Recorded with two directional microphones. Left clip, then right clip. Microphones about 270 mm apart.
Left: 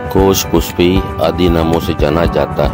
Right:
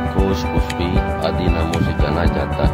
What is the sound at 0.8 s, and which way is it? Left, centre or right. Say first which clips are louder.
Speech: left 9 dB; left.